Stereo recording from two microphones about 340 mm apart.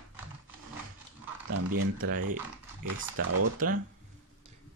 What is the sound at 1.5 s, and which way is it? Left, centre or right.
Speech, right.